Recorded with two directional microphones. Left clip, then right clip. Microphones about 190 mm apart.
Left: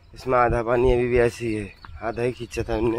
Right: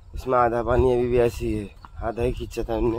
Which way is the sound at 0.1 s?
20° left (ahead or behind).